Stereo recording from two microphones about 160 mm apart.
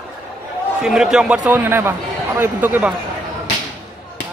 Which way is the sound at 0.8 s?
Centre (ahead or behind).